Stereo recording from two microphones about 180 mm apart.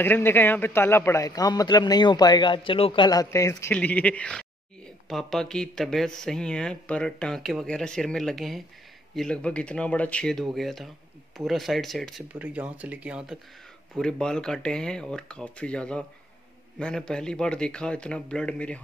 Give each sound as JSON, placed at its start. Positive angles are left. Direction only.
{"t": 0.0, "sound": "a man's voice", "side_deg": 10}
{"t": 13.9, "sound": "speech", "side_deg": 5}